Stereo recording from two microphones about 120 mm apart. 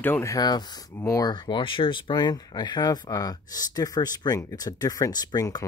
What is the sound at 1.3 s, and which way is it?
Speech, 40° left (ahead or behind).